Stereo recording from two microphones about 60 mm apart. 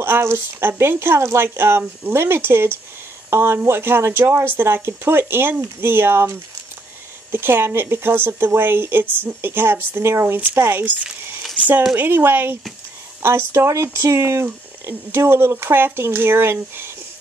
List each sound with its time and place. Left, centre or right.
0.0 s speech: right
13.5 s speech: right